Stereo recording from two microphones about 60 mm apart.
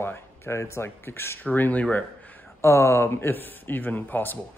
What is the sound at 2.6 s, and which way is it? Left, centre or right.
Speech, left.